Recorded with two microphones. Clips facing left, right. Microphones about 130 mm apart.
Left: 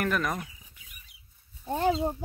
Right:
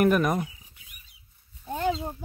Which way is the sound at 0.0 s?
15° right (ahead or behind).